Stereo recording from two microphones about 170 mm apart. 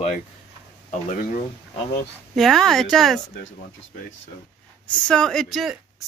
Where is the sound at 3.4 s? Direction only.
90° left.